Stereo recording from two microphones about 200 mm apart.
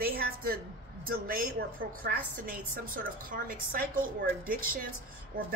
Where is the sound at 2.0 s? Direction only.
45° right (ahead or behind).